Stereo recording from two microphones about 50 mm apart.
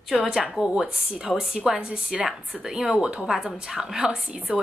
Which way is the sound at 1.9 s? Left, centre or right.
Right.